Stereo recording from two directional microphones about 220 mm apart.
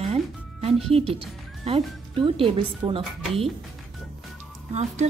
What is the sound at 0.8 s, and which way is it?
Speech, 25° right (ahead or behind).